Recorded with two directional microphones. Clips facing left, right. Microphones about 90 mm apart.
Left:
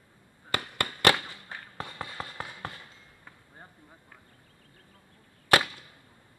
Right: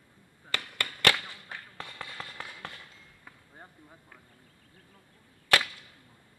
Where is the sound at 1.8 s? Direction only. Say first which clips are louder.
Left 5 dB; 25° left (ahead or behind).